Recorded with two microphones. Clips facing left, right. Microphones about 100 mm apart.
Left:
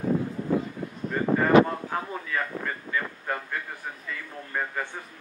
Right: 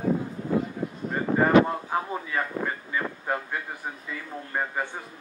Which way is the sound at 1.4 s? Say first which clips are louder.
Even; 15° right (ahead or behind).